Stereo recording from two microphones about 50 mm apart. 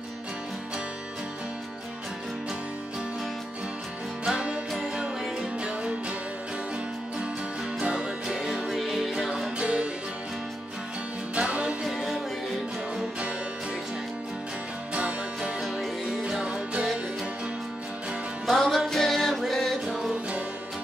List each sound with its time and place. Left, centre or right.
4.3 s music: centre
7.8 s music: centre
8.6 s music: centre
11.3 s music: right
11.8 s music: centre
15.0 s music: right
15.6 s music: centre
16.3 s music: centre
18.5 s music: centre